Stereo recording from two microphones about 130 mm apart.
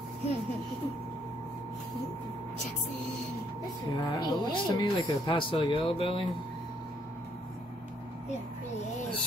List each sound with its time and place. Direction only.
3.9 s speech: 30° left (ahead or behind)